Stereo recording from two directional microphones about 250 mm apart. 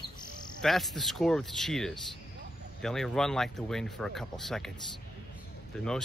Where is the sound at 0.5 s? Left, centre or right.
Centre.